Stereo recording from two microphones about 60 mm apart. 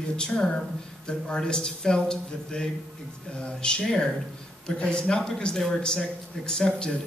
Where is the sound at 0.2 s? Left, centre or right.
Centre.